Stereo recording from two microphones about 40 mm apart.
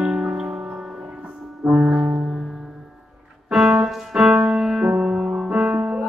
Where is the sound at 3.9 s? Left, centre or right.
Centre.